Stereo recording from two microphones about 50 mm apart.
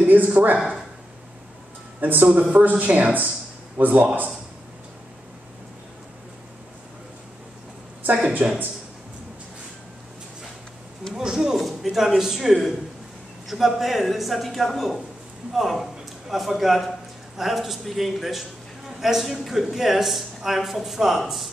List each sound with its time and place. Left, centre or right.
0.0 s speech: right
2.0 s speech: right
8.1 s speech: right
11.1 s a man's voice: centre
11.5 s a man's voice: centre